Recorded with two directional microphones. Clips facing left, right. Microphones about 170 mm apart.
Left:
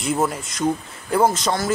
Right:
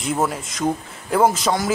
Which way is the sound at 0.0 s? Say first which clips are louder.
Even; centre (ahead or behind).